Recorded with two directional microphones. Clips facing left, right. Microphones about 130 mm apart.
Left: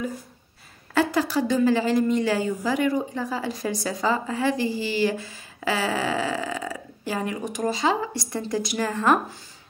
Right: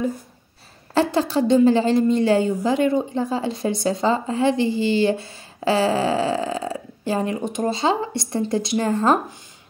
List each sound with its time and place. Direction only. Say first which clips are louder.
0.9 s a woman's voice: right 3 dB; 30° right (ahead or behind)